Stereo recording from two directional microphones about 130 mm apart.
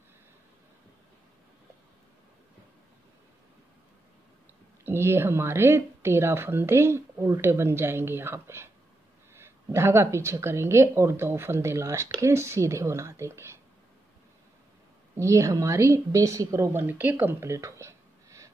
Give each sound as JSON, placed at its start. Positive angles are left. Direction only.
{"t": 4.8, "sound": "speech", "side_deg": -20}
{"t": 15.1, "sound": "speech", "side_deg": -25}